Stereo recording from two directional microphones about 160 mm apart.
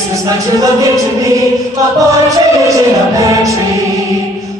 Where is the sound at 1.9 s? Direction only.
20° right (ahead or behind).